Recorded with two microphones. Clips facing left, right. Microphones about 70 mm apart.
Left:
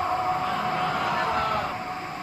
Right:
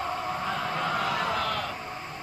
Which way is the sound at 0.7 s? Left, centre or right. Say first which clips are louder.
Left 3 dB; centre.